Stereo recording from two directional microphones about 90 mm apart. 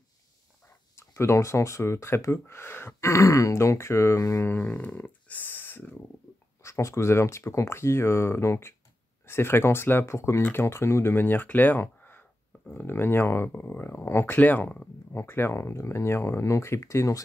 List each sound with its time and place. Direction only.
0.9 s speech: 30° left (ahead or behind)
4.5 s speech: 20° left (ahead or behind)
6.6 s speech: 35° left (ahead or behind)